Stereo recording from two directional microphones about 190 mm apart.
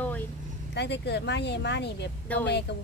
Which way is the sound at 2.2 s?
10° left (ahead or behind).